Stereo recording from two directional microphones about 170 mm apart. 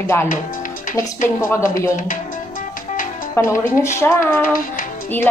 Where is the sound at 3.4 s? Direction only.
15° left (ahead or behind).